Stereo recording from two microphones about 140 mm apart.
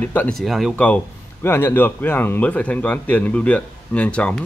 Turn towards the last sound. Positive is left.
turn(degrees=10)  # may be behind; listen again after turning